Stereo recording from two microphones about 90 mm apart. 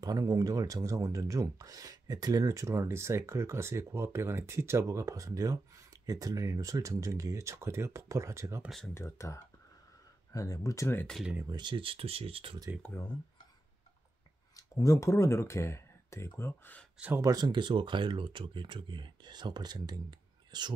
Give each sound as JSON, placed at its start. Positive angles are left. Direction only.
{"t": 0.0, "sound": "speech", "side_deg": -45}
{"t": 8.6, "sound": "speech", "side_deg": 0}
{"t": 8.9, "sound": "speech", "side_deg": 35}
{"t": 11.5, "sound": "speech", "side_deg": -60}
{"t": 14.8, "sound": "speech", "side_deg": 35}
{"t": 17.2, "sound": "speech", "side_deg": -45}